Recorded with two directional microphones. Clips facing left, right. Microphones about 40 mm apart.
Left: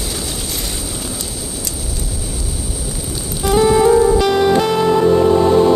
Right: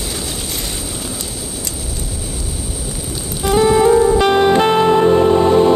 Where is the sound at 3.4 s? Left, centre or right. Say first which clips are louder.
Even; right.